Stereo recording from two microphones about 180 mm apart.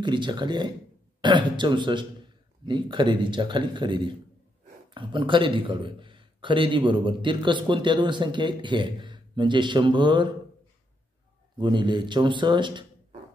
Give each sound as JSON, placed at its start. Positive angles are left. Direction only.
{"t": 0.0, "sound": "a man's voice", "side_deg": -25}
{"t": 11.5, "sound": "a man's voice", "side_deg": -25}